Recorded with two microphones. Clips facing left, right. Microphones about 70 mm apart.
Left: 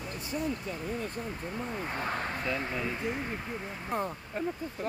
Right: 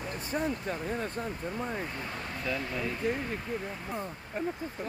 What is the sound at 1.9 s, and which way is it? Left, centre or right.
Speech, left.